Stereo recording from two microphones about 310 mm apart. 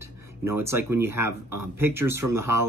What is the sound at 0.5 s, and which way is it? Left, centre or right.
Speech, centre.